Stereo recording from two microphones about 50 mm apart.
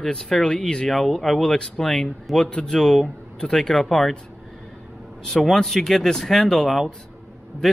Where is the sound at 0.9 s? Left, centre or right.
Centre.